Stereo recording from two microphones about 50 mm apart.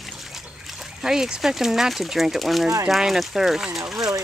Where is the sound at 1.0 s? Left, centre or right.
Centre.